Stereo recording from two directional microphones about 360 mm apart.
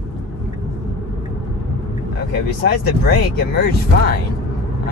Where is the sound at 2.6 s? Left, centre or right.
Left.